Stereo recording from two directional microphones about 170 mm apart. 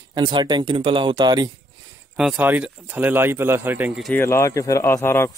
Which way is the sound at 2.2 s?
5° right (ahead or behind).